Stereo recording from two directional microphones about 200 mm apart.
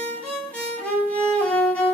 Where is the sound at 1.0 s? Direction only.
10° left (ahead or behind).